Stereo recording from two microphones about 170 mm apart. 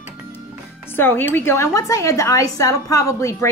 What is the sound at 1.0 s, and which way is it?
A woman's voice, 10° left (ahead or behind).